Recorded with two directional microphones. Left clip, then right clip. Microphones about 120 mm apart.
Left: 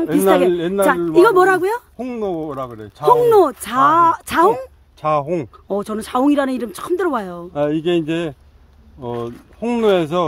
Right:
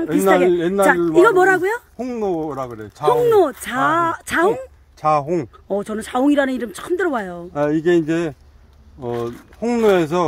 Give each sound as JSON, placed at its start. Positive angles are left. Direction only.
{"t": 0.2, "sound": "speech", "side_deg": 60}
{"t": 0.7, "sound": "speech", "side_deg": 20}
{"t": 2.0, "sound": "speech", "side_deg": 35}
{"t": 5.0, "sound": "speech", "side_deg": 45}
{"t": 5.8, "sound": "speech", "side_deg": 15}
{"t": 7.5, "sound": "speech", "side_deg": 35}